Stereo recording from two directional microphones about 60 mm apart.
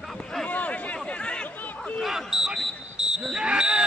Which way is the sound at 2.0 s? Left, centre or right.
Centre.